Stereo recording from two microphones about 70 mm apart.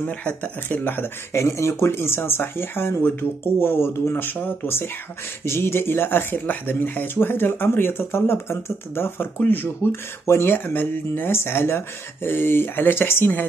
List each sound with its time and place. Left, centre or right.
0.0 s speech: centre
1.3 s speech: left